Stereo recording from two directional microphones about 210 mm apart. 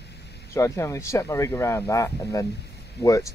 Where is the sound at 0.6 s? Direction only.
15° left (ahead or behind).